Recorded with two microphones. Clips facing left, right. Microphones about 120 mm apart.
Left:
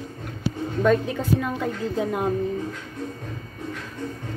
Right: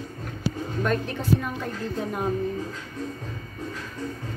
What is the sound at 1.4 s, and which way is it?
Speech, 90° left.